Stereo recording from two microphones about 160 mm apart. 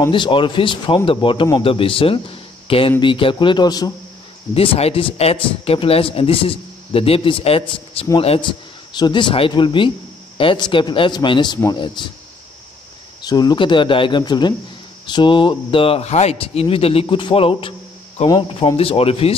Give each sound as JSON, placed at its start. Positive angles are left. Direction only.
{"t": 0.1, "sound": "speech", "side_deg": 30}
{"t": 4.6, "sound": "speech", "side_deg": 40}
{"t": 13.2, "sound": "speech", "side_deg": 25}
{"t": 18.8, "sound": "speech", "side_deg": 35}